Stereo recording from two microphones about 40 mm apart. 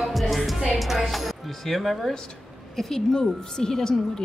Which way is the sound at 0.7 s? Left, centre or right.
Centre.